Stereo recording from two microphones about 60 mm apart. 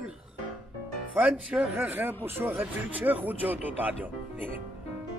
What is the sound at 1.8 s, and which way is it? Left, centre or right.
Speech, right.